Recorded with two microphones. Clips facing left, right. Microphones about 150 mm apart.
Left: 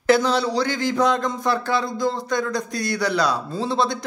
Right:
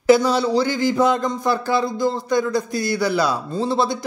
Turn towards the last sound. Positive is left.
turn(degrees=-5)  # may be behind; listen again after turning